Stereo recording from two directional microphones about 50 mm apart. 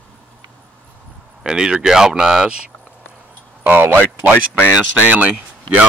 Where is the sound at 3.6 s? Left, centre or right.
Right.